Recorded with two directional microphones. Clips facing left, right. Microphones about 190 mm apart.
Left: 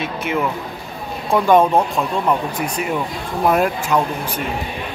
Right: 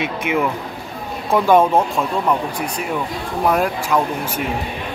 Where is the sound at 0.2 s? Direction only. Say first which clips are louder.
Even; 10° right (ahead or behind).